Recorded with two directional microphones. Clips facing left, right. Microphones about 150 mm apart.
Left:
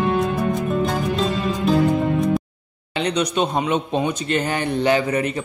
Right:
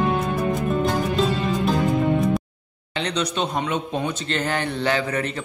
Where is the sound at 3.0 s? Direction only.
15° left (ahead or behind).